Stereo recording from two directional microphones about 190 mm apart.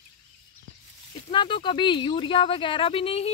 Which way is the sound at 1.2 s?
25° left (ahead or behind).